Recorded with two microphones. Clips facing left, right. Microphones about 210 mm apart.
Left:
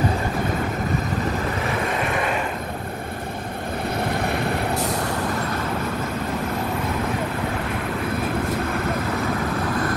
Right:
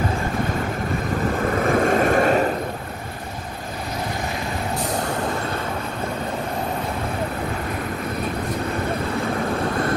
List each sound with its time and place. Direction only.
1.6 s vehicle: 50° right (ahead or behind)